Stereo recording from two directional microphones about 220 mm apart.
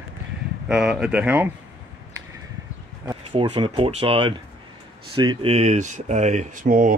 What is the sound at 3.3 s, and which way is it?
Speech, 25° right (ahead or behind).